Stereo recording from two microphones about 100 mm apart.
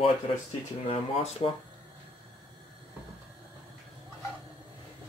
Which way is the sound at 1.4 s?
85° left.